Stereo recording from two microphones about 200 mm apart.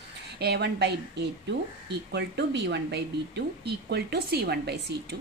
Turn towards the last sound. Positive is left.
turn(degrees=-55)  # may be behind; listen again after turning